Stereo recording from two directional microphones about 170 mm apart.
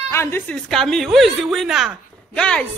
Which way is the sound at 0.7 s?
Centre (ahead or behind).